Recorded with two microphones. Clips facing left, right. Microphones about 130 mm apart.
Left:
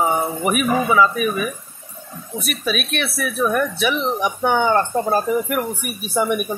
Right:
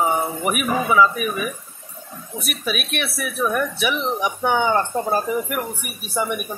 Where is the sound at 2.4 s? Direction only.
10° right (ahead or behind).